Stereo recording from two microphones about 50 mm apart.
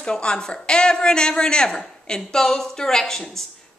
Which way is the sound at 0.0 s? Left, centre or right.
Centre.